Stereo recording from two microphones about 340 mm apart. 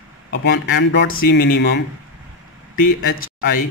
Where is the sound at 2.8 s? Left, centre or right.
Left.